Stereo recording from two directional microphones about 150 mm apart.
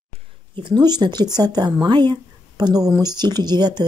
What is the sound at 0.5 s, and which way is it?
Speech, 30° right (ahead or behind).